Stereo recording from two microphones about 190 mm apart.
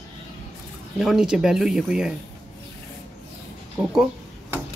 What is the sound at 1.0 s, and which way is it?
Speech, centre (ahead or behind).